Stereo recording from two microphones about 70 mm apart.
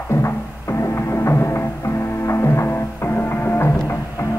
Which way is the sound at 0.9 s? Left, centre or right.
Left.